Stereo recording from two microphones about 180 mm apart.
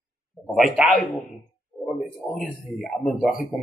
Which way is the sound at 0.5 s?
Centre (ahead or behind).